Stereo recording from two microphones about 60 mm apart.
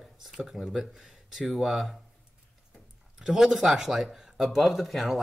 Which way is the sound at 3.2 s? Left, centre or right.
Centre.